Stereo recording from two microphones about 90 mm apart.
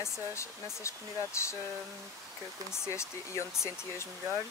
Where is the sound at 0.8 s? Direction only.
30° left (ahead or behind).